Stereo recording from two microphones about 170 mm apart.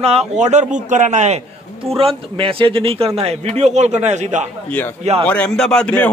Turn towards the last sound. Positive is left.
turn(degrees=5)  # may be behind; listen again after turning